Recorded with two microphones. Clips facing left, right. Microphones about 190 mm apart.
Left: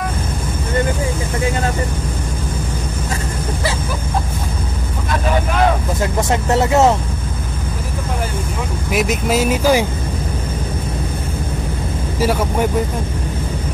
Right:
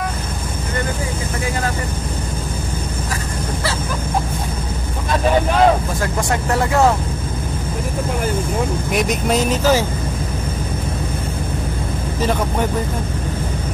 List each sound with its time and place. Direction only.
6.5 s speech: 20° left (ahead or behind)
8.9 s speech: centre (ahead or behind)
12.2 s speech: 10° left (ahead or behind)